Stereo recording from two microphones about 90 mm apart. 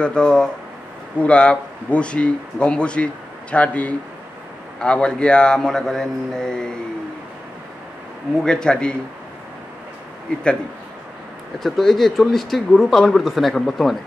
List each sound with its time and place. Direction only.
0.0 s a man's voice: 10° left (ahead or behind)
8.5 s a man's voice: 10° left (ahead or behind)
10.3 s a man's voice: 10° left (ahead or behind)
11.6 s speech: centre (ahead or behind)